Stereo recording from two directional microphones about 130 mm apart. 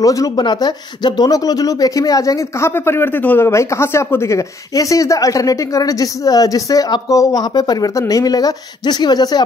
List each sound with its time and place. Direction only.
0.0 s speech: 25° left (ahead or behind)